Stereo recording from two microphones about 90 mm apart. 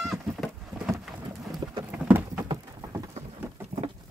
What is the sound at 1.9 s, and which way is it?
Clip-clop, 20° right (ahead or behind).